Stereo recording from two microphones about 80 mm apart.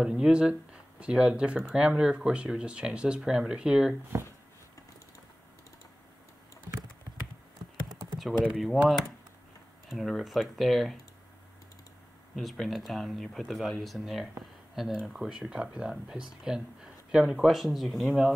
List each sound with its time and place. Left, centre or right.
0.0 s speech: centre
4.1 s speech: right
8.5 s speech: centre
12.4 s speech: centre